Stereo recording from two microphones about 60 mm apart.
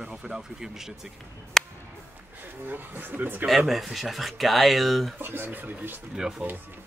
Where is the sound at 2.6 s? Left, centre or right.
Right.